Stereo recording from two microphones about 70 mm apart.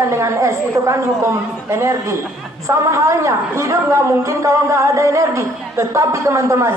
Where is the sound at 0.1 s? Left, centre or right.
Right.